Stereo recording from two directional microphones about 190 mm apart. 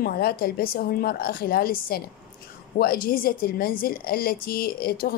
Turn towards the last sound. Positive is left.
turn(degrees=50)  # may be behind; listen again after turning